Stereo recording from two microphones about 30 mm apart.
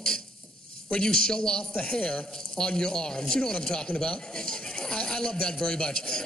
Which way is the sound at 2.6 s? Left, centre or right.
Left.